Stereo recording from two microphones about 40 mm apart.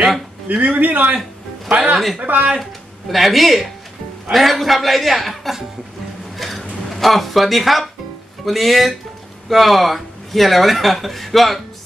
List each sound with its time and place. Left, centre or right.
0.5 s a man's voice: right
1.7 s a man's voice: right
2.1 s a man's voice: right
2.6 s speech: centre
6.3 s a sound: centre
6.9 s speech: centre